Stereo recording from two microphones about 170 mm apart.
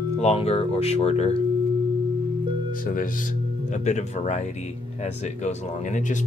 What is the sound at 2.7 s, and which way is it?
Speech, 55° left (ahead or behind).